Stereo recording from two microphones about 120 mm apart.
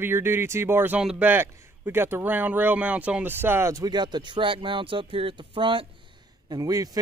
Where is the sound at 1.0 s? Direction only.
5° right (ahead or behind).